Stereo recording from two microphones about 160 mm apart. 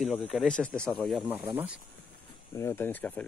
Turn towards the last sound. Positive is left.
turn(degrees=10)  # may be behind; listen again after turning